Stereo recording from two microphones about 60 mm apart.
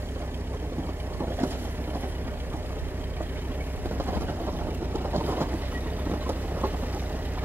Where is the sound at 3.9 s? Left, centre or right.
Right.